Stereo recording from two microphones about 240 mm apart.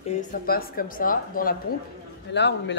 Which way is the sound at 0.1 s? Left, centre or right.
Left.